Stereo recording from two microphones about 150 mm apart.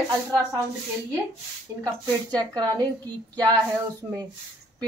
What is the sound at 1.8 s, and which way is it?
Speech, 25° right (ahead or behind).